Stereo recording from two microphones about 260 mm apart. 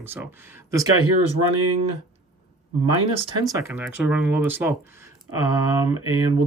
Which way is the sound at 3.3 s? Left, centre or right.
Centre.